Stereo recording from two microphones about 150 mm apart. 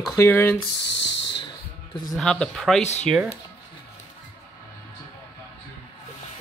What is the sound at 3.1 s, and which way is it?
Speech, 5° right (ahead or behind).